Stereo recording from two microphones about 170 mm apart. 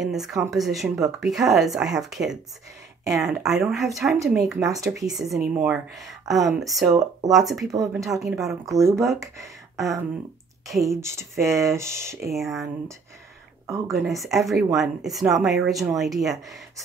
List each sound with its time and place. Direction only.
0.0 s speech: centre (ahead or behind)
4.2 s speech: 20° right (ahead or behind)
4.9 s speech: centre (ahead or behind)
5.5 s speech: 15° right (ahead or behind)
5.9 s speech: centre (ahead or behind)
6.9 s speech: 20° right (ahead or behind)
7.3 s speech: centre (ahead or behind)
8.6 s speech: 20° right (ahead or behind)
9.4 s a sound: centre (ahead or behind)
10.9 s speech: 15° right (ahead or behind)
12.3 s speech: centre (ahead or behind)
13.7 s speech: 15° right (ahead or behind)
13.9 s speech: centre (ahead or behind)